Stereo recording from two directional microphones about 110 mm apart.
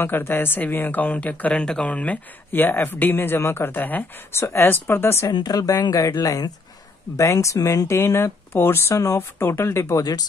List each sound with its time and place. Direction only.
0.0 s speech: 20° left (ahead or behind)
5.3 s speech: 35° left (ahead or behind)